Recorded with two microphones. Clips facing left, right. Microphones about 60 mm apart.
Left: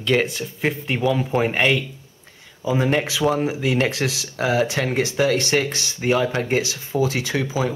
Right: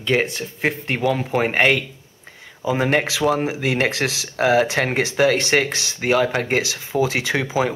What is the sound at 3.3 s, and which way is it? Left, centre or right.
Speech, right.